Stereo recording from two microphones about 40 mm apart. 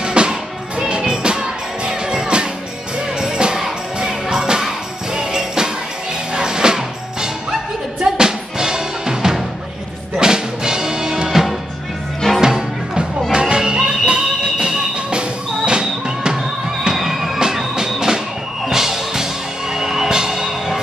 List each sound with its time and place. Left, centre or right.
0.0 s music: right
16.8 s music: centre
17.4 s music: centre
19.7 s emergency vehicle: centre
20.1 s music: centre